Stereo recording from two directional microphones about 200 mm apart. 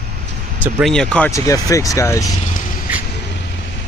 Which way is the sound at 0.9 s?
5° left (ahead or behind).